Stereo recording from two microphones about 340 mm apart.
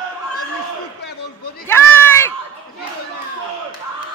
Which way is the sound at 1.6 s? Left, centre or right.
Centre.